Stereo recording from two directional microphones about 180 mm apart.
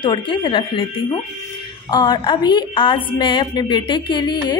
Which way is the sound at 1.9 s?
25° left (ahead or behind).